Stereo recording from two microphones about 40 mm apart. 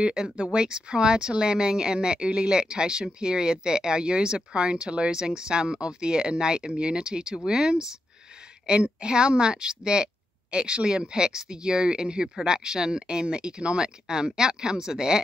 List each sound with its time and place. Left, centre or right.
0.4 s speech: right